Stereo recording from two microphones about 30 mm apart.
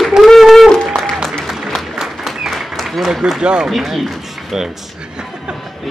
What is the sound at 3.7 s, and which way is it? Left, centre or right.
Speech, centre.